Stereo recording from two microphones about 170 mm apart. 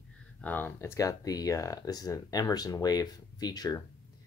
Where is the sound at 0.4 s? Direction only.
10° left (ahead or behind).